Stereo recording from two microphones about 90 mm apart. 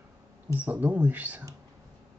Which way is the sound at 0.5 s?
20° right (ahead or behind).